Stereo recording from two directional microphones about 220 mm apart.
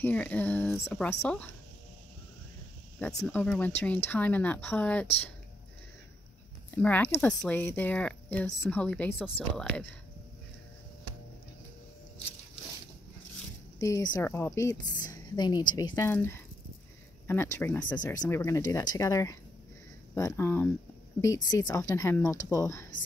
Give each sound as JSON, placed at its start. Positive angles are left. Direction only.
{"t": 0.0, "sound": "speech", "side_deg": 5}
{"t": 3.0, "sound": "speech", "side_deg": 10}
{"t": 6.7, "sound": "speech", "side_deg": 10}
{"t": 13.7, "sound": "speech", "side_deg": 15}
{"t": 15.0, "sound": "a sound", "side_deg": 20}
{"t": 15.9, "sound": "speech", "side_deg": 10}